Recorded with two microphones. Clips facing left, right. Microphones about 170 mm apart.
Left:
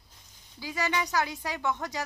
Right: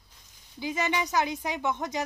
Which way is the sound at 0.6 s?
20° right (ahead or behind).